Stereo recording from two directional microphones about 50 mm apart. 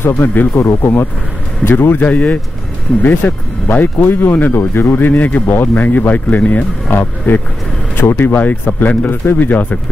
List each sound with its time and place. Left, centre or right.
0.0 s speech: left
0.6 s speech: left
1.6 s speech: left
2.0 s speech: left
4.6 s speech: left
5.1 s speech: left